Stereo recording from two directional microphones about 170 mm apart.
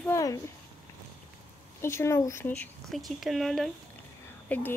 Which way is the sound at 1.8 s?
15° left (ahead or behind).